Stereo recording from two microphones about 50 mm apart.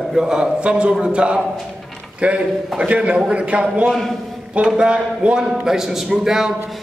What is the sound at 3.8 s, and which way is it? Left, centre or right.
Speech, centre.